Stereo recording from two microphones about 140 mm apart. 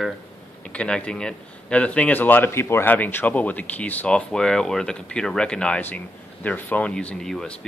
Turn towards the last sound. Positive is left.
turn(degrees=5)  # may be behind; listen again after turning